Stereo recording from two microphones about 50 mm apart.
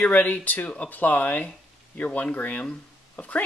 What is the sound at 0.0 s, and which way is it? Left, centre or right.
Speech, left.